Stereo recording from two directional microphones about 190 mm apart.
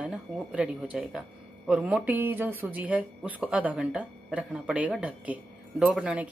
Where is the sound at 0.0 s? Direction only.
5° right (ahead or behind).